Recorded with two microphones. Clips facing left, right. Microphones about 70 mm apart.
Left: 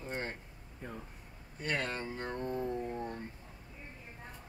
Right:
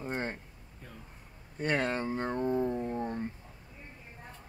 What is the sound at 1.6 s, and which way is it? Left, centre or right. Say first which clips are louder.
Speech: right 6 dB; right.